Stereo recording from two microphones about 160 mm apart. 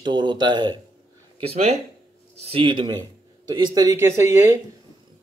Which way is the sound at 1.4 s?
40° right (ahead or behind).